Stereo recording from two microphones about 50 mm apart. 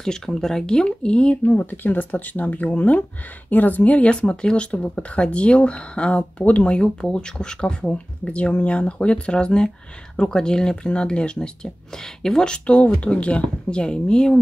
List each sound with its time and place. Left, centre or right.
0.0 s speech: centre
1.4 s speech: left
6.7 s speech: centre